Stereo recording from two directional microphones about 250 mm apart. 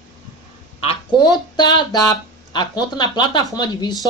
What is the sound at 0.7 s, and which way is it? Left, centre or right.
Speech, centre.